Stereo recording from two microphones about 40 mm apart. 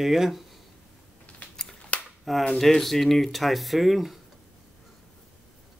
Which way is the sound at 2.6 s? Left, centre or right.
Centre.